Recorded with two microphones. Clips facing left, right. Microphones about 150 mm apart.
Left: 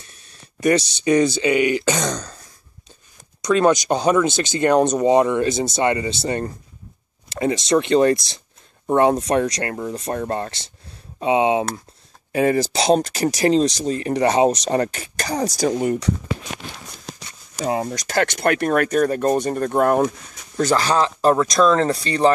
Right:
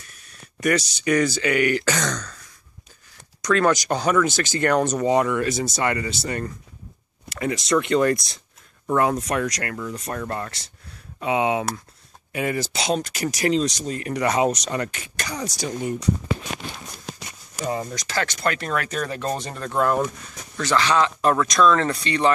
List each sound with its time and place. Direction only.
0.0 s speech: 25° left (ahead or behind)
3.4 s speech: 20° left (ahead or behind)
12.3 s speech: 35° left (ahead or behind)
15.8 s speech: 65° left (ahead or behind)
17.8 s speech: 50° left (ahead or behind)
20.5 s speech: 40° left (ahead or behind)